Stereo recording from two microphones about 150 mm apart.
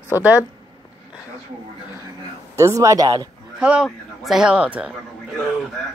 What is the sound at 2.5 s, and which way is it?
Speech, 20° right (ahead or behind).